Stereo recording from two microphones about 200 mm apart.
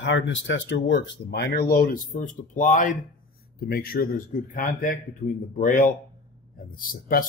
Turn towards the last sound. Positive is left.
turn(degrees=45)  # may be behind; listen again after turning